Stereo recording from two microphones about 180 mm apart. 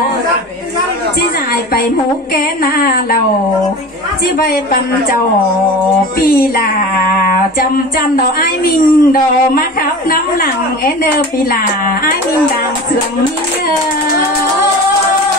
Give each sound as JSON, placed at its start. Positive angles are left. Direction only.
{"t": 2.3, "sound": "a woman's voice", "side_deg": 55}
{"t": 4.4, "sound": "a woman's voice", "side_deg": 55}
{"t": 6.2, "sound": "a woman's voice", "side_deg": 55}